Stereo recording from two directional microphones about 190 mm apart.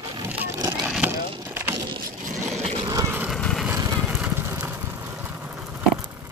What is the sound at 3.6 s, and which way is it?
Vehicle, 10° right (ahead or behind).